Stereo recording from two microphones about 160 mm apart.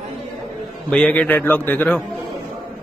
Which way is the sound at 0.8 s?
5° left (ahead or behind).